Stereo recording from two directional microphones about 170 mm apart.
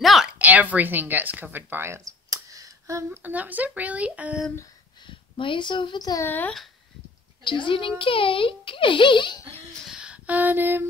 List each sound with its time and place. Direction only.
0.0 s a woman's voice: centre (ahead or behind)
5.0 s speech: 30° left (ahead or behind)
6.2 s speech: 10° left (ahead or behind)
7.4 s a child's voice: 30° left (ahead or behind)
9.8 s a sound: 5° right (ahead or behind)